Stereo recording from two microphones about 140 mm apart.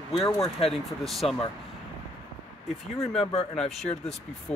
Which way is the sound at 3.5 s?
5° left (ahead or behind).